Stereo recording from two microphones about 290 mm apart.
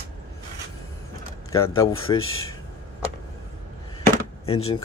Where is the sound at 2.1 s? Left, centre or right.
Left.